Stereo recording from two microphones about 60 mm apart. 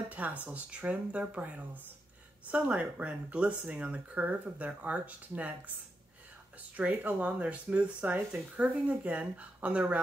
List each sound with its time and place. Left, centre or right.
0.1 s speech: right
6.8 s speech: right